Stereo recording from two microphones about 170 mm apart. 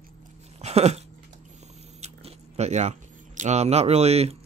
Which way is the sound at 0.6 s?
40° right (ahead or behind).